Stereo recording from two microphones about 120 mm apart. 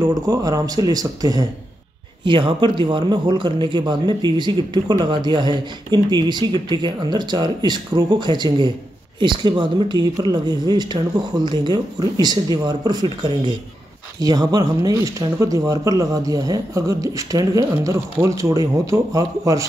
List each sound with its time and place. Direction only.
0.0 s speech: 30° right (ahead or behind)
2.2 s speech: 45° right (ahead or behind); by 19.6 s 30° right (ahead or behind)